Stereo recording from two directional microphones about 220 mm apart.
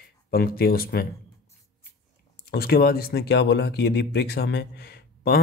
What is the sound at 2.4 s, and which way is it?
Speech, 45° left (ahead or behind).